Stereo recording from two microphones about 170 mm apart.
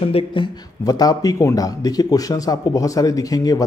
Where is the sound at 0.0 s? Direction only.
35° left (ahead or behind).